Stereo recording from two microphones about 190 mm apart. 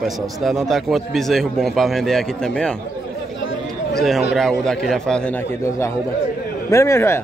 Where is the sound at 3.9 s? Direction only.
Centre (ahead or behind).